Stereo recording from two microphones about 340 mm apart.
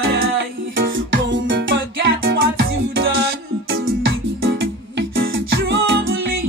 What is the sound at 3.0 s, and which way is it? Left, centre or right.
Music, right.